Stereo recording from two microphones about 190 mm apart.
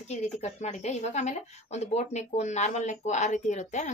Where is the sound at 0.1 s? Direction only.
35° left (ahead or behind).